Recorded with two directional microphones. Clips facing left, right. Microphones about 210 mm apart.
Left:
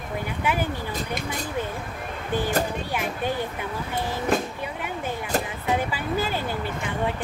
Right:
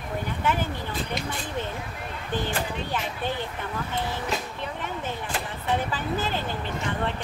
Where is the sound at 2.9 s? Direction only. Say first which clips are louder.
Left 3 dB; 10° left (ahead or behind).